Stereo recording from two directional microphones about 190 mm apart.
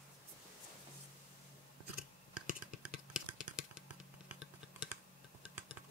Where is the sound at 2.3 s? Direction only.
45° right (ahead or behind).